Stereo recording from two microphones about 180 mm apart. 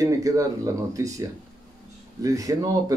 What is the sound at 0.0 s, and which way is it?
A man's voice, 20° right (ahead or behind).